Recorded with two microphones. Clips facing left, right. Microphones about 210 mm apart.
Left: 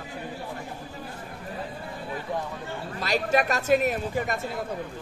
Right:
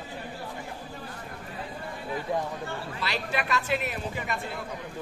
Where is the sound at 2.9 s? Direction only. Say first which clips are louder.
Left 8 dB; 45° left (ahead or behind).